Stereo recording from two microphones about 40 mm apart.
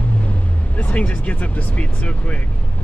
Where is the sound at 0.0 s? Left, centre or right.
Left.